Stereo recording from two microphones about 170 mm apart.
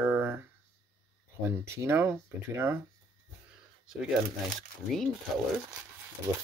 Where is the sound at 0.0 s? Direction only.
10° right (ahead or behind).